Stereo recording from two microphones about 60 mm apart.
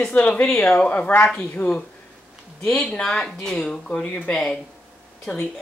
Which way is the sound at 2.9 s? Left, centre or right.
Centre.